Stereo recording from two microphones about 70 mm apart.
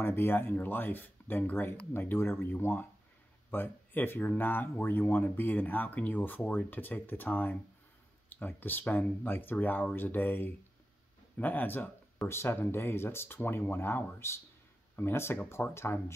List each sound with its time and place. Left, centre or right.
0.0 s speech: left